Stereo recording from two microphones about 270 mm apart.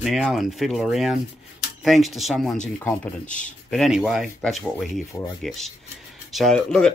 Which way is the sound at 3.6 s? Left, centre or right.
Centre.